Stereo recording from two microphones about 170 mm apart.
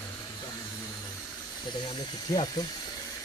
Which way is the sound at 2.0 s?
25° left (ahead or behind).